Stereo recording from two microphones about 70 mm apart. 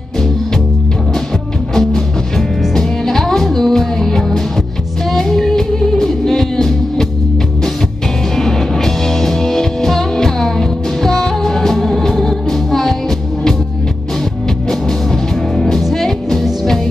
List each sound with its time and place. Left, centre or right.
1.8 s music: centre
8.4 s music: centre
15.5 s music: centre